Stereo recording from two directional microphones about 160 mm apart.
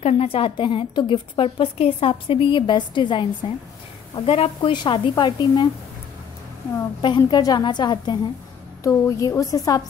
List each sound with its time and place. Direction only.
0.0 s a woman's voice: 35° left (ahead or behind)
7.0 s speech: 30° left (ahead or behind)